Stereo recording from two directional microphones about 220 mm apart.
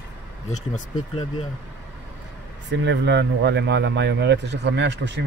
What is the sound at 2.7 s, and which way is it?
Speech, 55° right (ahead or behind).